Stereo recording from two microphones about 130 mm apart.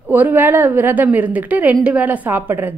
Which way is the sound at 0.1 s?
15° right (ahead or behind).